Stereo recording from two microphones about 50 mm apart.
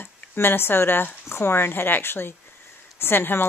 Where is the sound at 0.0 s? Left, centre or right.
Left.